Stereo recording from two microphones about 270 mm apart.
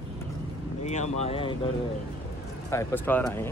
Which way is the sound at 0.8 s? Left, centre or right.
Left.